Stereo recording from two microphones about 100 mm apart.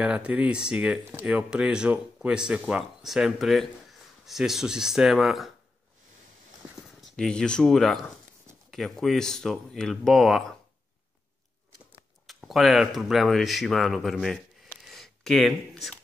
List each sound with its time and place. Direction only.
0.0 s speech: 10° right (ahead or behind)
7.0 s speech: 5° left (ahead or behind)
12.3 s speech: centre (ahead or behind)